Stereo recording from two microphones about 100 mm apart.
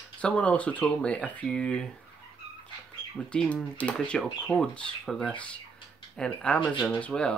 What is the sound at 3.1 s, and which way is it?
Speech, 10° left (ahead or behind).